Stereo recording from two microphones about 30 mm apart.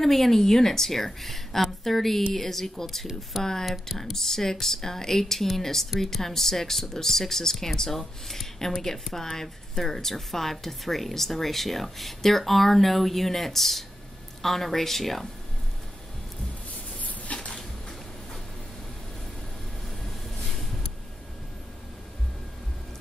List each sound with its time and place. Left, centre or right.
0.0 s a woman's voice: centre
3.3 s speech: centre
4.0 s a woman's voice: centre
17.5 s a sound: left